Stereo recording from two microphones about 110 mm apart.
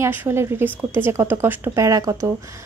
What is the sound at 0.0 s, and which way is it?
A woman's voice, 20° right (ahead or behind).